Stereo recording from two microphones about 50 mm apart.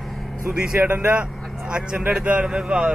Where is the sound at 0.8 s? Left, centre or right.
Right.